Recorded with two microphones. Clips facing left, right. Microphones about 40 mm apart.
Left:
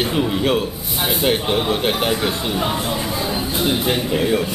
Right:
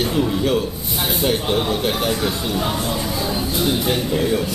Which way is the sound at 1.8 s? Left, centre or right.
Left.